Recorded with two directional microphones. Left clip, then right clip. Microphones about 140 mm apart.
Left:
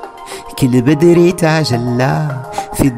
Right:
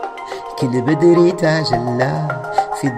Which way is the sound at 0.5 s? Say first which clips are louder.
Left 5 dB; 55° left (ahead or behind).